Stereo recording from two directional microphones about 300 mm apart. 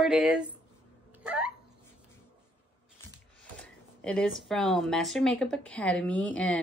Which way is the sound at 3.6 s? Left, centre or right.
Centre.